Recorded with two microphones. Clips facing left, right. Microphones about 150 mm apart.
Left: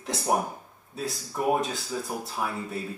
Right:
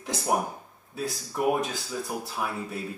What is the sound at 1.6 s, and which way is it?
Speech, centre (ahead or behind).